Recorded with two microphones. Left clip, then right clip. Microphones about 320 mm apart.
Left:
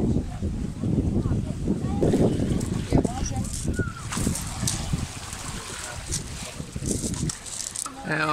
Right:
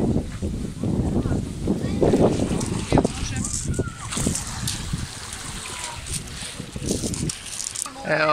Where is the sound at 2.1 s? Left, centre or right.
Right.